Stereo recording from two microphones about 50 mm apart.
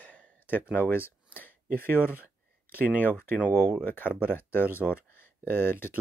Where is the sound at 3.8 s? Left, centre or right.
Left.